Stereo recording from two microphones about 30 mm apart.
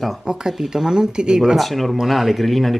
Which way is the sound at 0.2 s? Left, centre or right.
Centre.